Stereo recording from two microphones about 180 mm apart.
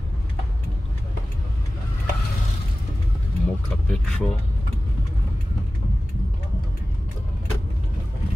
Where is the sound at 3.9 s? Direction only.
5° left (ahead or behind).